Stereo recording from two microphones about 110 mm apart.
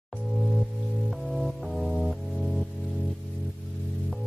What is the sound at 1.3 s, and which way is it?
Music, centre (ahead or behind).